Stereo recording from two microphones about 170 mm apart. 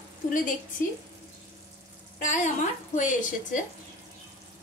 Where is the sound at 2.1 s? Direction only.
45° left (ahead or behind).